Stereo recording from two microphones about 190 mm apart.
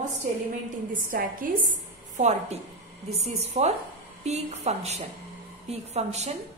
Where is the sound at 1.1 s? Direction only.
45° right (ahead or behind).